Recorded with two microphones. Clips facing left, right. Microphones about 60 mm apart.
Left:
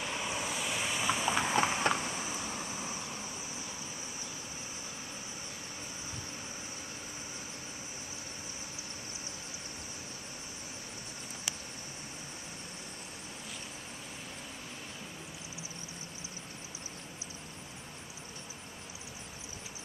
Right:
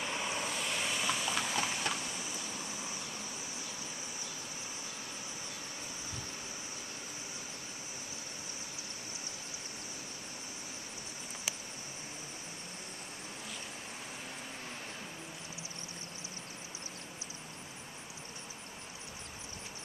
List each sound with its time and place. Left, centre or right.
0.0 s vehicle: centre; by 3.0 s left